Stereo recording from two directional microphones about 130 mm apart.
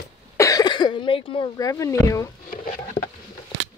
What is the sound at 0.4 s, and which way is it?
Cough, 30° left (ahead or behind).